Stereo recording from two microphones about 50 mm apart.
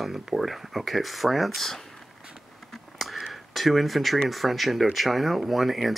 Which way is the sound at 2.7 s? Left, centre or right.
Centre.